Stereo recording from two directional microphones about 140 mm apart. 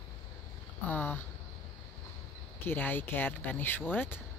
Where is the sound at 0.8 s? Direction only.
15° left (ahead or behind).